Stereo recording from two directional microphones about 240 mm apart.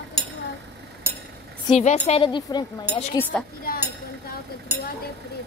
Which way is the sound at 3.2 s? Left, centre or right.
Centre.